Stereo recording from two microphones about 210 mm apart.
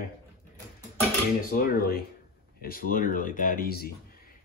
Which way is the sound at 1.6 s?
45° left (ahead or behind).